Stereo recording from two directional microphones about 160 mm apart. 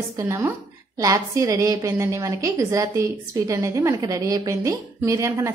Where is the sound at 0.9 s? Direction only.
20° right (ahead or behind).